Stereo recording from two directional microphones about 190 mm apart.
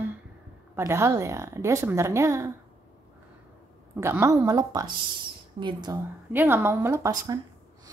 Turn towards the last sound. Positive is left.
turn(degrees=-15)  # may be behind; listen again after turning